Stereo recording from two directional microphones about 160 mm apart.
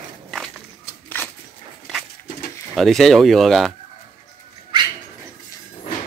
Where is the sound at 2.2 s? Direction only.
75° left (ahead or behind).